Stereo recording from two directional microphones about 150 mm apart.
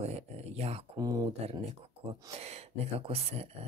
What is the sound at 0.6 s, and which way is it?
Speech, 45° right (ahead or behind).